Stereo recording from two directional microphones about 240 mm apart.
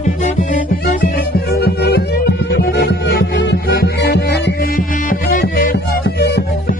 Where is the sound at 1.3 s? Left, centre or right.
Left.